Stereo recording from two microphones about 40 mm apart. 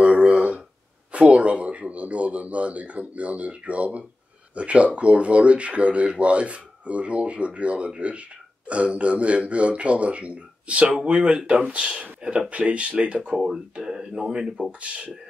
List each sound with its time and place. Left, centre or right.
0.0 s a sound: right
1.1 s speech: right
13.8 s speech: centre
14.8 s speech: right